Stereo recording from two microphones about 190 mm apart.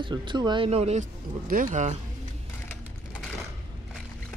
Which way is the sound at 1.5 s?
45° right (ahead or behind).